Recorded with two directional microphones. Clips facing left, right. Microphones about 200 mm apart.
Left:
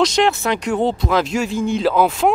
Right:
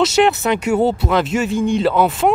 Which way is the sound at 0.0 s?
5° right (ahead or behind).